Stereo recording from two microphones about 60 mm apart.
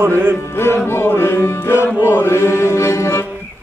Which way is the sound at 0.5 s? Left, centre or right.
Left.